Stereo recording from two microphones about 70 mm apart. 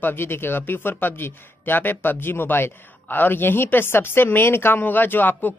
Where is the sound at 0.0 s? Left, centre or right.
Left.